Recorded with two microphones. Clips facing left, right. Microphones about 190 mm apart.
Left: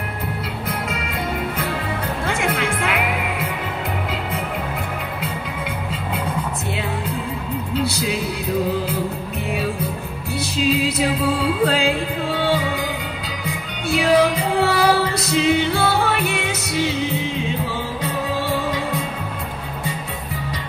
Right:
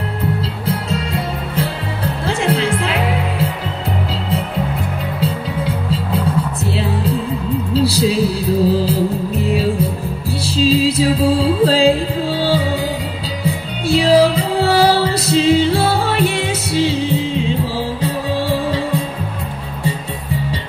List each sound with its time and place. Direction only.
0.7 s music: 30° right (ahead or behind)
5.2 s music: 30° right (ahead or behind)
7.7 s music: 30° right (ahead or behind)